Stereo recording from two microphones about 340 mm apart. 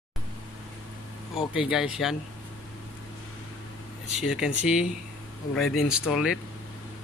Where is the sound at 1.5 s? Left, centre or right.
Centre.